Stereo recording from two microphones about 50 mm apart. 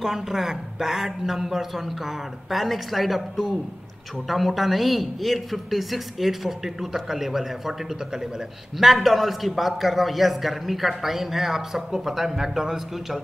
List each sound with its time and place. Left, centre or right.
0.0 s a man's voice: centre